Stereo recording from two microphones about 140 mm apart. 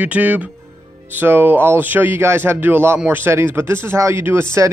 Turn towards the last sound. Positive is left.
turn(degrees=-20)  # may be behind; listen again after turning